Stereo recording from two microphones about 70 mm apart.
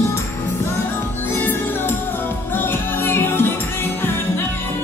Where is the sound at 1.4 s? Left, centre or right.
Left.